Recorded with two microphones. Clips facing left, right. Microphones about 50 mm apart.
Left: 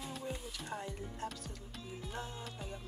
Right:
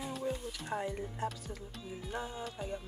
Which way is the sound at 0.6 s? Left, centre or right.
Centre.